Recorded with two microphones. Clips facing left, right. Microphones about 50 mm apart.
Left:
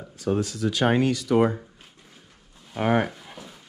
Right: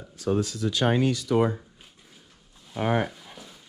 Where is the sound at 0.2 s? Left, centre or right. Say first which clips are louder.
Left 1 dB; left.